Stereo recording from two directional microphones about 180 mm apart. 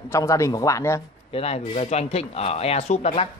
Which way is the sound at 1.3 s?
35° left (ahead or behind).